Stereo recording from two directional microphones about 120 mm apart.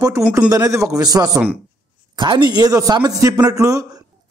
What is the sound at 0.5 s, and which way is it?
A man's voice, 25° right (ahead or behind).